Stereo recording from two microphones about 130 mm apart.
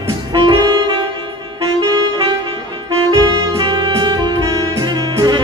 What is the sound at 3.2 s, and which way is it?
Music, 30° right (ahead or behind).